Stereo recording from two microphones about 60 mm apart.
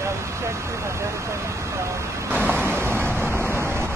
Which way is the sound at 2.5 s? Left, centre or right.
Right.